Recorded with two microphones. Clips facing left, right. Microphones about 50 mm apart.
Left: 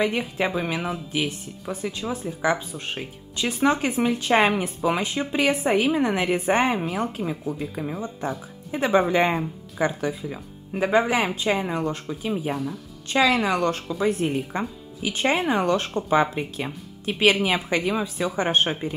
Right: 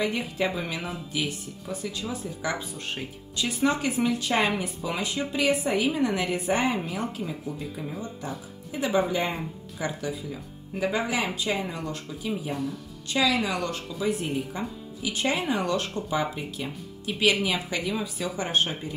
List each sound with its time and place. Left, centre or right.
0.0 s speech: left
8.7 s speech: left
12.5 s speech: centre
13.1 s speech: left
14.2 s speech: left